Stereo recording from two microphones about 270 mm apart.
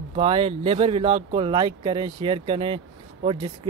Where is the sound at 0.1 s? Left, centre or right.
Right.